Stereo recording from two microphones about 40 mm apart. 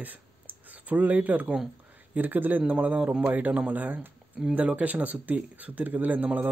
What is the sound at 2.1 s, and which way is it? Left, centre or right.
Speech, right.